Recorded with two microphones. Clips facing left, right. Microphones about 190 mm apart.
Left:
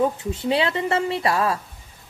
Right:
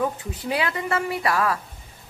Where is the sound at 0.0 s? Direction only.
25° left (ahead or behind).